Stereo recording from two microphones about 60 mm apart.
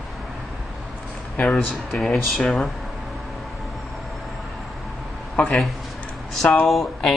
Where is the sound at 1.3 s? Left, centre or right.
Centre.